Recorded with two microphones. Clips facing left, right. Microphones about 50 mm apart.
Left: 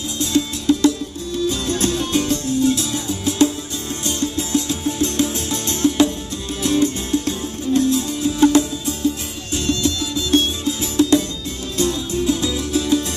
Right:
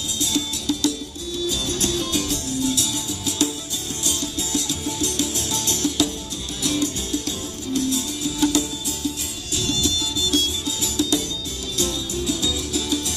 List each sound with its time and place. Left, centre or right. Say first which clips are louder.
0.2 s music: left 6 dB; left